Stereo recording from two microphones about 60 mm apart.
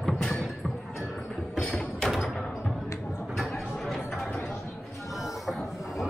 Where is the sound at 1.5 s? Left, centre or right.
Centre.